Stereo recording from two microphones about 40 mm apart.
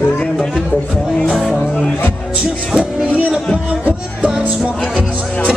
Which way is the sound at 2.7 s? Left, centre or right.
Right.